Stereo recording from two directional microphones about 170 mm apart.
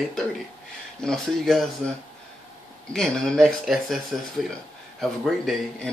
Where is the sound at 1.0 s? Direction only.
Centre (ahead or behind).